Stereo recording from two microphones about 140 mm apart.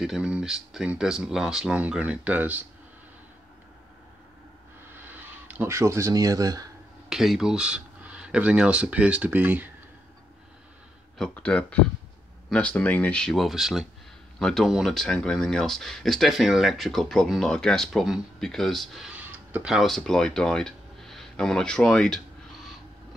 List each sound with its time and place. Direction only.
0.0 s speech: 5° right (ahead or behind)
4.9 s speech: 10° right (ahead or behind)
7.1 s speech: 5° right (ahead or behind)
11.1 s speech: 5° left (ahead or behind)
19.1 s tick-tock: 10° right (ahead or behind)